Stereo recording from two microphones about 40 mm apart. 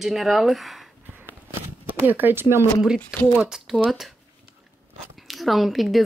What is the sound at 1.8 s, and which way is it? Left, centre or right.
Speech, right.